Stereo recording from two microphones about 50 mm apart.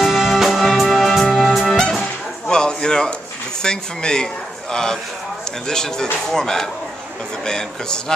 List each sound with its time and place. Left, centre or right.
0.0 s music: centre
1.7 s music: centre
3.6 s speech: centre
5.7 s speech: centre